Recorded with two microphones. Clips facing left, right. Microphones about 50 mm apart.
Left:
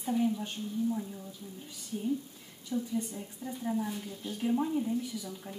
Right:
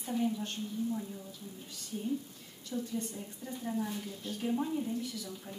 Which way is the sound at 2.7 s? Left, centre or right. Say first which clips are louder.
Left 3 dB; centre.